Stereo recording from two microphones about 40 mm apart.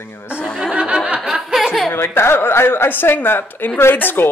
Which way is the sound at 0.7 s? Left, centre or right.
Right.